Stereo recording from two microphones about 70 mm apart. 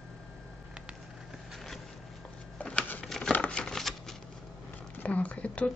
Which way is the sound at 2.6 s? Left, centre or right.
Centre.